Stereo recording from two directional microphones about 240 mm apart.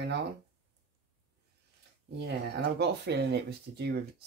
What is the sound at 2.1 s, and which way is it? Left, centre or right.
Speech, right.